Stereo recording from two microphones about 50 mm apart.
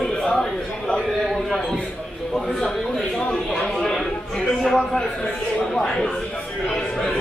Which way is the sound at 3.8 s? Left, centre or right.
Centre.